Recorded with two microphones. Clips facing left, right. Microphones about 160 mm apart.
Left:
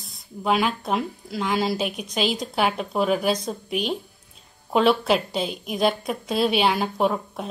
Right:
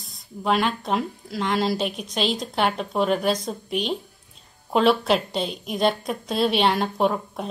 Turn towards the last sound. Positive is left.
turn(degrees=0)  # may be behind; listen again after turning